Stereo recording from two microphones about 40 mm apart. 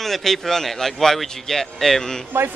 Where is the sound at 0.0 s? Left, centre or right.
Centre.